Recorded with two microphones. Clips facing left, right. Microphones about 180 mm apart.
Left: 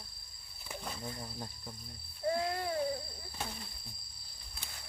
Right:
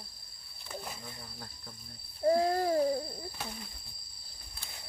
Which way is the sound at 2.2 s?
35° right (ahead or behind).